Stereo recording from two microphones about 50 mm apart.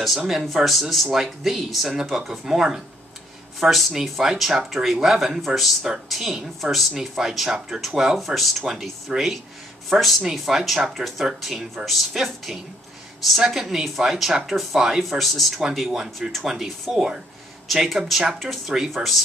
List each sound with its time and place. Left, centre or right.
0.6 s speech: centre